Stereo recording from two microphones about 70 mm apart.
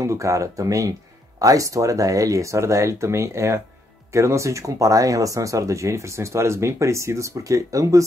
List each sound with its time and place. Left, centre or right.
0.0 s speech: right